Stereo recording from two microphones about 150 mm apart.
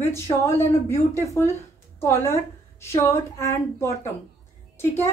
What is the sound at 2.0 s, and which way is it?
A woman's voice, 15° left (ahead or behind).